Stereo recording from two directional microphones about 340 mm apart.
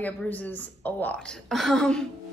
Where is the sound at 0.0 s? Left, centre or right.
Centre.